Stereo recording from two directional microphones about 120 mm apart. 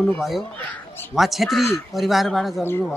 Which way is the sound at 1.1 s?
Centre (ahead or behind).